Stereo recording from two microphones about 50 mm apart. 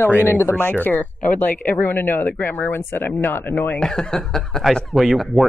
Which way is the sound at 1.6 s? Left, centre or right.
Left.